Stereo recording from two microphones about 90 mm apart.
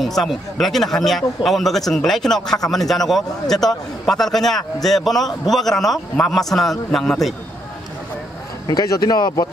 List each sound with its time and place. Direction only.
0.0 s a man's voice: 5° left (ahead or behind)
8.6 s speech: 40° left (ahead or behind)